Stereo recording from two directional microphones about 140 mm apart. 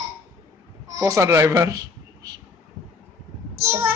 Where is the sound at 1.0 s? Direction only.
20° right (ahead or behind).